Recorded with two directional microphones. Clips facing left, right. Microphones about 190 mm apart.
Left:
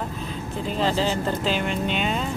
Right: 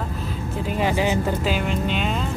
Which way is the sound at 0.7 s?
10° right (ahead or behind).